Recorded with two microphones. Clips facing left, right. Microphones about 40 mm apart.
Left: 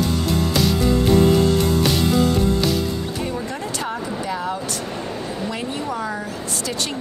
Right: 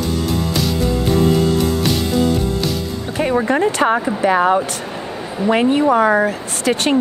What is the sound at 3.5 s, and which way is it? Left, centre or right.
Speech, right.